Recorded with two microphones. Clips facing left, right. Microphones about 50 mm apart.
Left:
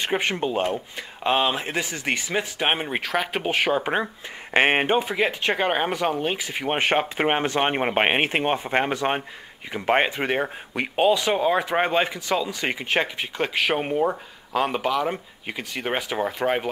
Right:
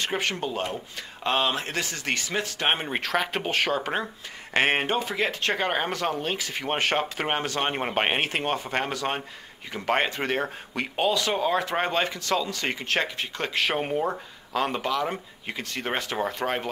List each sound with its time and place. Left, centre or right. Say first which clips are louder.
0.0 s speech: left 4 dB; centre